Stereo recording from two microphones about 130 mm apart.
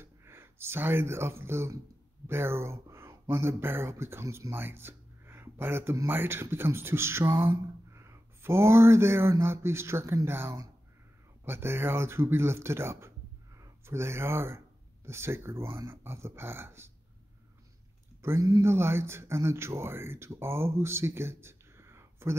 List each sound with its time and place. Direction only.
0.0 s speech: 20° right (ahead or behind)
18.2 s speech: 25° right (ahead or behind)